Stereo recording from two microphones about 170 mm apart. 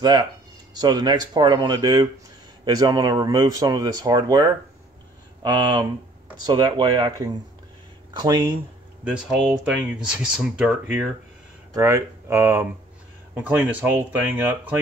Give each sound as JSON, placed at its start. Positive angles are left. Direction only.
{"t": 0.0, "sound": "speech", "side_deg": -25}
{"t": 9.0, "sound": "speech", "side_deg": -5}